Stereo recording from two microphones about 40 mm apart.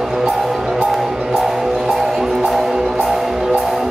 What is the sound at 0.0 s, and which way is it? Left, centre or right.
Music, centre.